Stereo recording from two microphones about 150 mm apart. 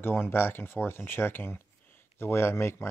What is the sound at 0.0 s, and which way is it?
Speech, 15° left (ahead or behind).